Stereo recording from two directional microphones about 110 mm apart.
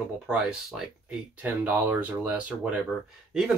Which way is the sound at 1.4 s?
15° right (ahead or behind).